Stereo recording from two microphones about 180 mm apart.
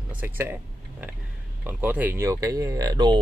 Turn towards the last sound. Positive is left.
turn(degrees=-20)  # may be behind; listen again after turning